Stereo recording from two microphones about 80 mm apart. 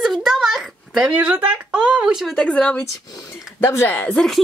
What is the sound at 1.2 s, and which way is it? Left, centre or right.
A woman's voice, centre.